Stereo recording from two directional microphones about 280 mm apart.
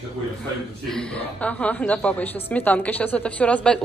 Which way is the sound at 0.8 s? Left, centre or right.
Centre.